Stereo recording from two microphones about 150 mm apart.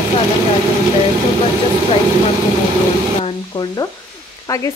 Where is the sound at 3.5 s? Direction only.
25° left (ahead or behind).